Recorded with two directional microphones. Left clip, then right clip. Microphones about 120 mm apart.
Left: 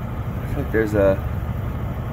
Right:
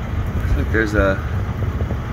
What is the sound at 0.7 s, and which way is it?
Speech, 55° left (ahead or behind).